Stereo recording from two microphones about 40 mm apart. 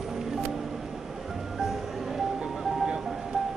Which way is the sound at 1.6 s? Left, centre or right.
Centre.